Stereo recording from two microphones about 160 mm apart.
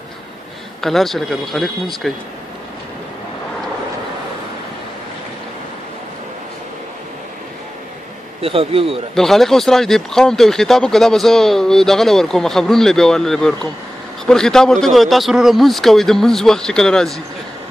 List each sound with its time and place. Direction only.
0.7 s speech: centre (ahead or behind)
8.4 s speech: 35° right (ahead or behind)
9.1 s speech: centre (ahead or behind)